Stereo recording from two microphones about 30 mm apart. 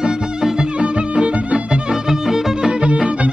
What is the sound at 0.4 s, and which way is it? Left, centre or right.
Music, right.